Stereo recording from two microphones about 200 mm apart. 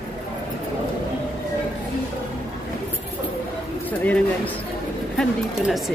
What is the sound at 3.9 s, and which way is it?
Speech, 10° left (ahead or behind).